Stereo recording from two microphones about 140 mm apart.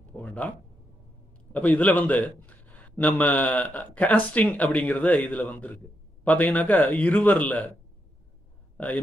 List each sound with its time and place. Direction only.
0.2 s a sound: 10° left (ahead or behind)
1.5 s speech: 10° left (ahead or behind)
8.7 s a man's voice: 10° left (ahead or behind)